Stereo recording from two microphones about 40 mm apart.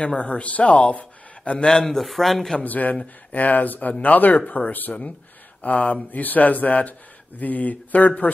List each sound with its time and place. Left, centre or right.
0.0 s speech: left
1.7 s a man's voice: centre
2.6 s speech: left